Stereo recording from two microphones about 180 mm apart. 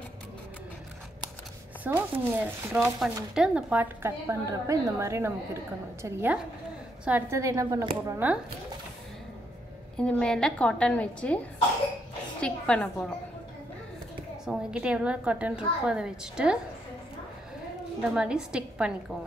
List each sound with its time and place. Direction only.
1.9 s speech: 10° right (ahead or behind)
9.9 s a woman's voice: 5° left (ahead or behind)
12.4 s a woman's voice: 5° left (ahead or behind)
14.4 s a woman's voice: 5° right (ahead or behind)
18.1 s a woman's voice: 5° right (ahead or behind)